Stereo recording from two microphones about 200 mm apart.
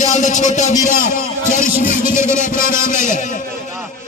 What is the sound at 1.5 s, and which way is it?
Music, 40° left (ahead or behind).